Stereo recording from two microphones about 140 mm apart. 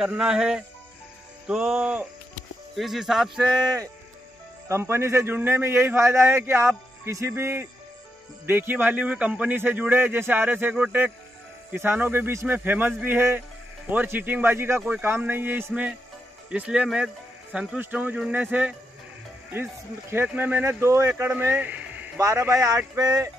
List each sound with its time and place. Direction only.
0.0 s a man's voice: 5° right (ahead or behind)
4.6 s a man's voice: 20° right (ahead or behind)
20.1 s a man's voice: 15° right (ahead or behind)
22.5 s a sound: 25° right (ahead or behind)